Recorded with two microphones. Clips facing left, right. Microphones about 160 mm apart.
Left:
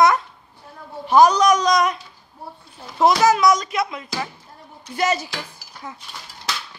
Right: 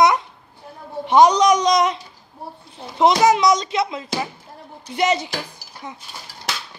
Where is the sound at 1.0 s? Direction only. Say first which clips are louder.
Right 1 dB; 20° right (ahead or behind).